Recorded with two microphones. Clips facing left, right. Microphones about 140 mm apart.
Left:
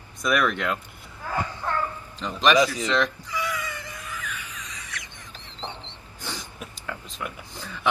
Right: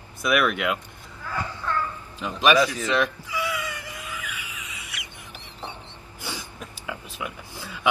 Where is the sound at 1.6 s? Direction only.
35° left (ahead or behind).